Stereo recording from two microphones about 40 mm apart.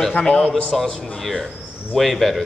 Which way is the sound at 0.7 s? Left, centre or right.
Centre.